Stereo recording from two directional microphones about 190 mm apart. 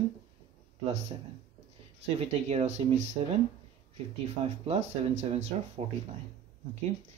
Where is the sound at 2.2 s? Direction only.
35° right (ahead or behind).